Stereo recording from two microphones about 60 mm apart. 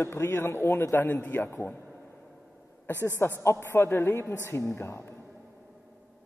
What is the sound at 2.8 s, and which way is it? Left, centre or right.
Speech, left.